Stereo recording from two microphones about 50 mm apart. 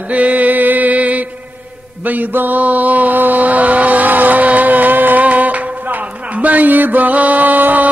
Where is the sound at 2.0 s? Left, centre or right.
Right.